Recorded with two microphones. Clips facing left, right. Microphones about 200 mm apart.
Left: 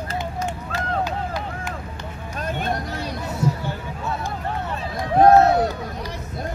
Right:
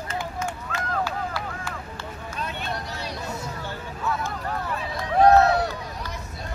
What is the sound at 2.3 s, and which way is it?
Vehicle, 45° left (ahead or behind).